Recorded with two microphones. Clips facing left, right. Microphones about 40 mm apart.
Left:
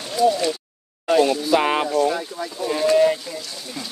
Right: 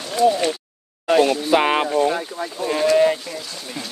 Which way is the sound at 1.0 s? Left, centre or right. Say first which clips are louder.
Right 1 dB; right.